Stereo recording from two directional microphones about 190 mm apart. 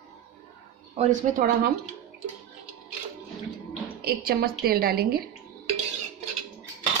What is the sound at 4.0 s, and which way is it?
A woman's voice, 55° right (ahead or behind).